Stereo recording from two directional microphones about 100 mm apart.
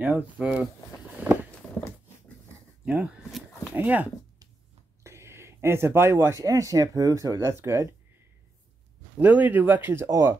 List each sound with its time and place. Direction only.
0.0 s speech: 15° right (ahead or behind)
1.2 s walk: 20° right (ahead or behind)
2.8 s speech: 10° right (ahead or behind)
5.0 s a sound: 25° right (ahead or behind)
6.4 s speech: 35° right (ahead or behind)
9.2 s speech: 15° right (ahead or behind)